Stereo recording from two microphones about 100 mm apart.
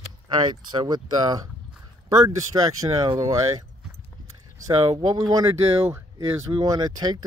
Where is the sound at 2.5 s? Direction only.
40° right (ahead or behind).